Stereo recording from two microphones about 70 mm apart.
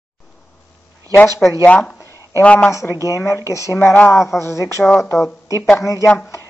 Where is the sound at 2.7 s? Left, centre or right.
Left.